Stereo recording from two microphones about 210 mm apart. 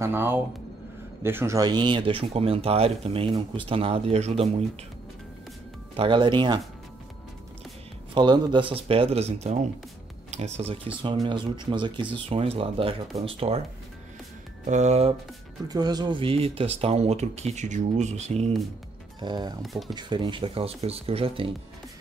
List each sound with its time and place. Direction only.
0.0 s speech: 10° right (ahead or behind); by 4.6 s 30° right (ahead or behind)
5.9 s speech: 25° right (ahead or behind)
8.1 s speech: 20° right (ahead or behind)
14.7 s speech: 35° right (ahead or behind)
15.7 s speech: 20° right (ahead or behind)
19.2 s speech: 20° right (ahead or behind)
19.6 s speech: centre (ahead or behind)
19.9 s speech: 20° right (ahead or behind)